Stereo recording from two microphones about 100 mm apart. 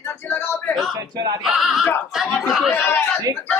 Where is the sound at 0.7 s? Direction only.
Centre (ahead or behind).